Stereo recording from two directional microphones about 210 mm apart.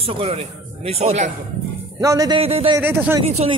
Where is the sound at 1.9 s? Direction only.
15° right (ahead or behind).